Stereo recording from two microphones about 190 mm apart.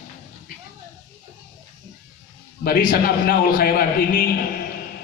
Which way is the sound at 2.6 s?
50° left (ahead or behind).